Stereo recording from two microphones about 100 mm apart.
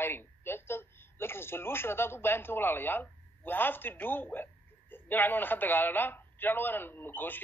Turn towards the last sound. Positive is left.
turn(degrees=20)  # may be behind; listen again after turning